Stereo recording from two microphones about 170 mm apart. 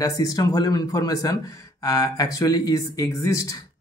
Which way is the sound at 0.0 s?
20° left (ahead or behind).